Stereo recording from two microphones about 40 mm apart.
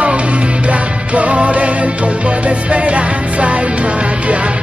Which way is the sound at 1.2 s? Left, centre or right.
Right.